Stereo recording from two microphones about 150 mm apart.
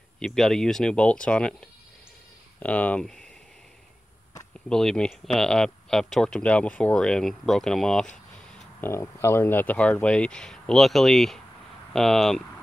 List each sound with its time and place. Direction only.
0.2 s speech: centre (ahead or behind)
2.6 s speech: 10° left (ahead or behind)
4.6 s speech: 5° left (ahead or behind)
8.8 s speech: 15° left (ahead or behind); by 12.4 s centre (ahead or behind)